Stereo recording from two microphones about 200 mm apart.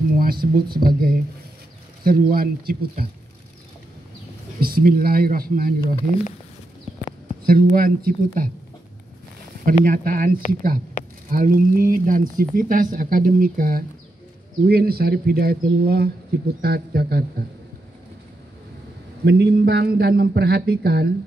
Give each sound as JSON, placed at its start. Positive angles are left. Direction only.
{"t": 0.2, "sound": "a man's voice", "side_deg": -50}
{"t": 4.6, "sound": "a man's voice", "side_deg": -50}
{"t": 7.4, "sound": "a man's voice", "side_deg": -45}
{"t": 9.7, "sound": "a man's voice", "side_deg": -45}
{"t": 19.2, "sound": "a man's voice", "side_deg": -55}